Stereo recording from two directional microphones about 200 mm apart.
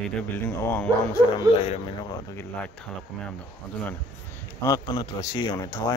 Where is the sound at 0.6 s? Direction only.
10° left (ahead or behind).